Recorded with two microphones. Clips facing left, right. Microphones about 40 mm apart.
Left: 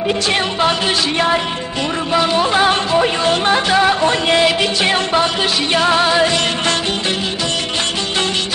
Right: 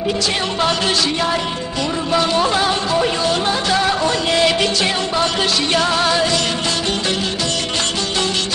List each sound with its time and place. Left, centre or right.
2.1 s music: centre
2.6 s music: left
4.4 s music: centre
4.8 s music: left
5.2 s music: centre